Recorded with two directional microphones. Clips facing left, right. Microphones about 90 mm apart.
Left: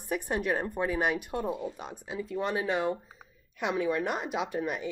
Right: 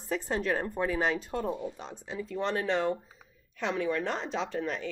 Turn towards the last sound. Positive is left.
turn(degrees=15)  # may be behind; listen again after turning